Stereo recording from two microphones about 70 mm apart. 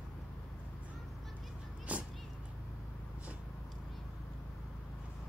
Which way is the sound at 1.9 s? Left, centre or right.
Centre.